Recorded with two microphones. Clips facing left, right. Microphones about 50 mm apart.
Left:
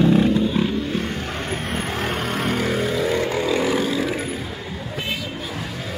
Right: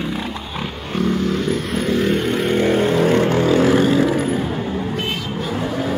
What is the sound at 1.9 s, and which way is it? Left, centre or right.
Vehicle, left.